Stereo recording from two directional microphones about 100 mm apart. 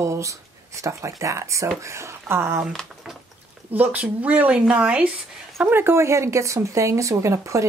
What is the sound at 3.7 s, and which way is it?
Speech, 15° right (ahead or behind).